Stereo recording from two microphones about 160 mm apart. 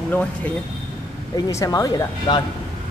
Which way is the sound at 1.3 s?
20° left (ahead or behind).